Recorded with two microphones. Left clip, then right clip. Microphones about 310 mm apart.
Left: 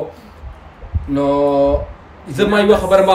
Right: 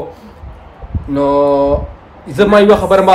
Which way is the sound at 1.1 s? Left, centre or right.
Centre.